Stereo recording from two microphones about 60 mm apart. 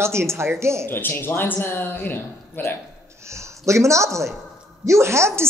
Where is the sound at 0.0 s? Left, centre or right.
Right.